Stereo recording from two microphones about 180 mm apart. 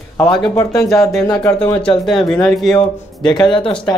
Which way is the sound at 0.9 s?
Centre (ahead or behind).